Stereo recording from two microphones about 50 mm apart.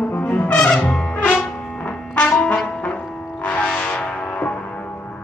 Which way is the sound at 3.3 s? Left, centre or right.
Left.